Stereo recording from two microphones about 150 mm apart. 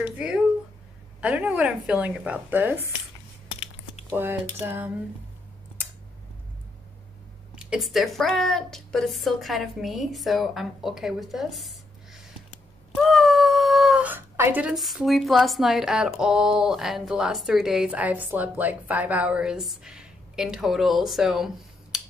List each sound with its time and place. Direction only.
0.0 s speech: 5° right (ahead or behind)
3.5 s typing: 40° left (ahead or behind)
4.1 s speech: 15° right (ahead or behind)
7.5 s a woman's voice: 5° right (ahead or behind)